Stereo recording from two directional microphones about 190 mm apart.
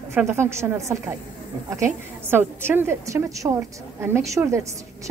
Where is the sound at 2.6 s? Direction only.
10° right (ahead or behind).